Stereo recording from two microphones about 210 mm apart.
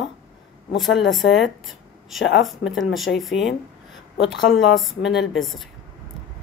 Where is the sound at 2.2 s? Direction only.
60° left (ahead or behind).